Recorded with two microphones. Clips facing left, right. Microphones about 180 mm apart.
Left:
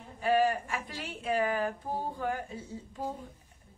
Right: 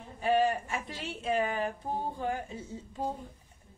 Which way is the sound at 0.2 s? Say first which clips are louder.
Even; 25° right (ahead or behind).